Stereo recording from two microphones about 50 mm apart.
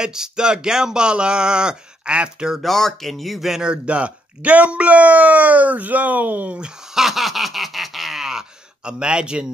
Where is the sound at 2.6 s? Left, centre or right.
Centre.